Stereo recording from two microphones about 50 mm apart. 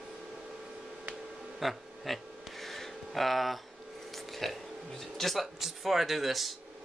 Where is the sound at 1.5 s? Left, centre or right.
Centre.